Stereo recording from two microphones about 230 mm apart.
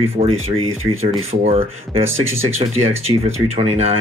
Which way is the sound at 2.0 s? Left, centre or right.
Right.